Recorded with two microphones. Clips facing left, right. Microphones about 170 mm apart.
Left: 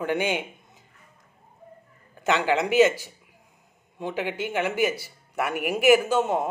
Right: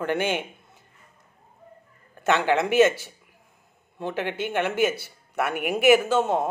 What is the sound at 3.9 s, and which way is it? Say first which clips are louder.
Speech: right 1 dB; 15° left (ahead or behind).